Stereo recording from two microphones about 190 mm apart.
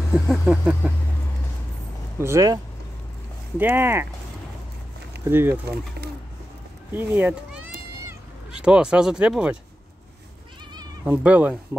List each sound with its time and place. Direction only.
0.1 s a sound: 5° right (ahead or behind)
2.1 s speech: 15° right (ahead or behind)
5.2 s speech: 10° right (ahead or behind)
6.9 s speech: 10° right (ahead or behind)
10.7 s cat: 20° right (ahead or behind)
11.2 s speech: 5° right (ahead or behind)